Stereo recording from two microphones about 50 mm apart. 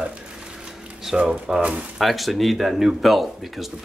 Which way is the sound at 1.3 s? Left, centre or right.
Centre.